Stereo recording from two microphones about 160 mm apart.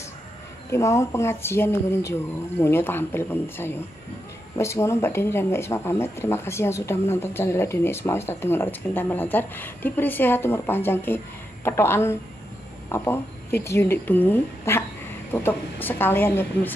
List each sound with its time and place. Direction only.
0.7 s speech: 20° left (ahead or behind)